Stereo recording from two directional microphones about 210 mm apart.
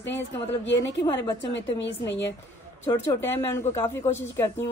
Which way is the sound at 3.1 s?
15° left (ahead or behind).